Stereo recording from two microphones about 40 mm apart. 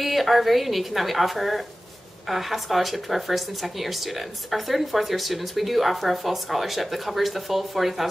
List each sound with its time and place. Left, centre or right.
0.0 s speech: centre